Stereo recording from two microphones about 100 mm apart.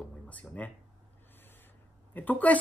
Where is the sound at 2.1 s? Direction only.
15° left (ahead or behind).